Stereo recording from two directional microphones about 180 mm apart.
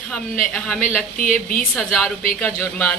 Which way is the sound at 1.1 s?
50° left (ahead or behind).